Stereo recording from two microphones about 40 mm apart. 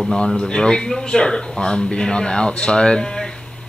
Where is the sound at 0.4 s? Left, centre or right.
Centre.